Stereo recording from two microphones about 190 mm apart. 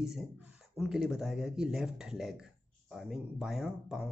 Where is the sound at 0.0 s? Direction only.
5° right (ahead or behind).